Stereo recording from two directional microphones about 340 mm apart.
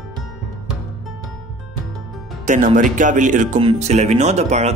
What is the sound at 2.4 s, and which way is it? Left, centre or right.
Speech, right.